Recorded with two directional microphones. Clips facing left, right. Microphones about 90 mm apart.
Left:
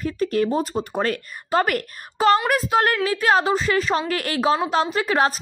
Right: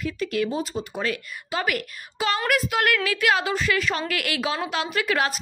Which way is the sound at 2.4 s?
30° left (ahead or behind).